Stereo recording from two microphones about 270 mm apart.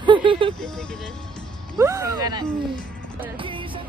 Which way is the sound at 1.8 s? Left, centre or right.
Centre.